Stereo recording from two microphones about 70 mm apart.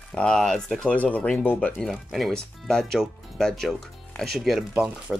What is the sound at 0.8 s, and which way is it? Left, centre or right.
Speech, centre.